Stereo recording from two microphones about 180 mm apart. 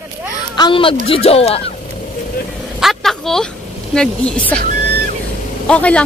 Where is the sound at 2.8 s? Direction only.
Centre (ahead or behind).